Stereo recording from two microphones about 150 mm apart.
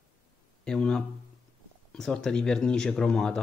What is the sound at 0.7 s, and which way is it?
Speech, 5° left (ahead or behind).